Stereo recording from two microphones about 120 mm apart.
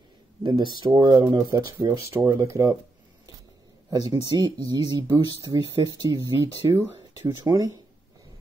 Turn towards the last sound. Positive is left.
turn(degrees=-30)  # may be behind; listen again after turning